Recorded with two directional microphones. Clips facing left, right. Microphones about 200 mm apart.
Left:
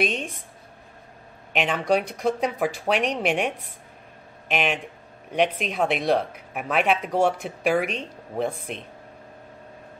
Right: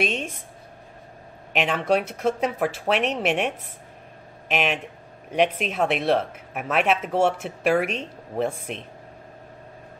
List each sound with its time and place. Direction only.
0.0 s speech: 5° right (ahead or behind)
1.5 s speech: centre (ahead or behind)